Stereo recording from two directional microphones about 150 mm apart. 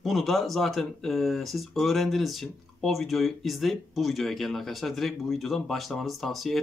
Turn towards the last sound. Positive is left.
turn(degrees=0)  # may be behind; listen again after turning